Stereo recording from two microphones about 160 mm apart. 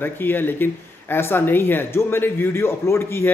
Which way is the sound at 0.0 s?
15° left (ahead or behind).